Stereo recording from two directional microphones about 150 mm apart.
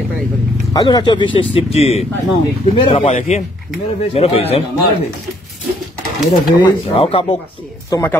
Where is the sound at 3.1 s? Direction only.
50° left (ahead or behind).